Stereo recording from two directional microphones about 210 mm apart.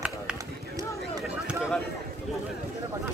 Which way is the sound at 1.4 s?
5° right (ahead or behind).